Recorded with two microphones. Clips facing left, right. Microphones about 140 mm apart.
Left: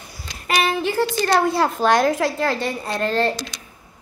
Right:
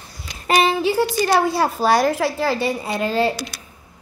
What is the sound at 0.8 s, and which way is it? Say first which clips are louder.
A woman's voice: right 2 dB; 10° right (ahead or behind).